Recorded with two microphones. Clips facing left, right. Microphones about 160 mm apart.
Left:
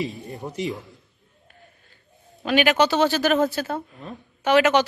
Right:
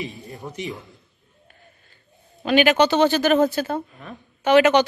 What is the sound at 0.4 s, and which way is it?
Speech, 20° left (ahead or behind).